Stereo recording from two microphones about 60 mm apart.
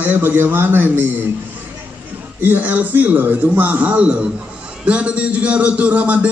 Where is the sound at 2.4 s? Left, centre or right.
Right.